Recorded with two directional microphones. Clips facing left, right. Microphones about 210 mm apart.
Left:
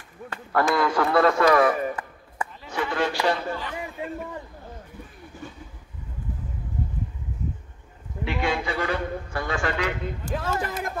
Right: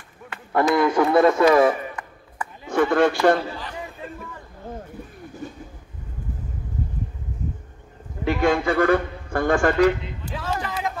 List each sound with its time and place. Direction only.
0.7 s speech: 20° right (ahead or behind)
2.7 s a man's voice: 50° right (ahead or behind)
8.3 s a man's voice: 45° right (ahead or behind)
10.0 s speech: 50° left (ahead or behind)